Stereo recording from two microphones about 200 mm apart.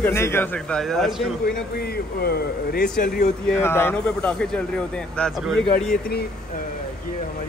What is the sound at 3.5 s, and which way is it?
Speech, 10° left (ahead or behind).